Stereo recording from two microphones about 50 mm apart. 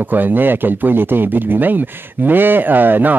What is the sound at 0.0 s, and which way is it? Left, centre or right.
Speech, right.